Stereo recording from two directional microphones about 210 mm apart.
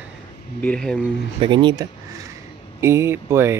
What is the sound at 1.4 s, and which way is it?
Speech, 20° right (ahead or behind).